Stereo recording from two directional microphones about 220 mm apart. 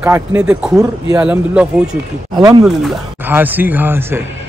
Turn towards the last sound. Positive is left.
turn(degrees=-10)  # may be behind; listen again after turning